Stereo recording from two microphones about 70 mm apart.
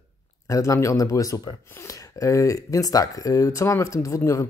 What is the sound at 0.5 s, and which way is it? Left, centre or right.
Speech, left.